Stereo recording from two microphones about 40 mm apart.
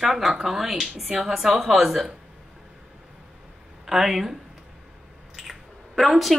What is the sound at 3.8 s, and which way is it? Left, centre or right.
Speech, centre.